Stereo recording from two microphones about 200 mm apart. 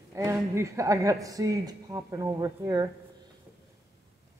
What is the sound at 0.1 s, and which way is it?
Speech, 15° right (ahead or behind).